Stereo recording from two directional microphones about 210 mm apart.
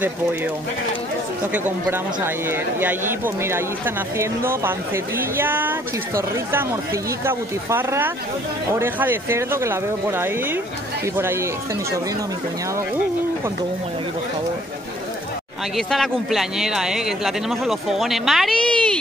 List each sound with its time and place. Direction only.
1.5 s a man's voice: 10° right (ahead or behind)
15.7 s speech: centre (ahead or behind)